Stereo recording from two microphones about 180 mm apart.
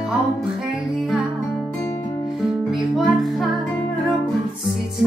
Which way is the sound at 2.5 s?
Centre (ahead or behind).